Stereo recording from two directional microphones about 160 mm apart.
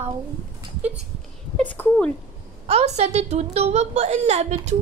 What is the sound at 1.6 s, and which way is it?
Speech, 10° left (ahead or behind).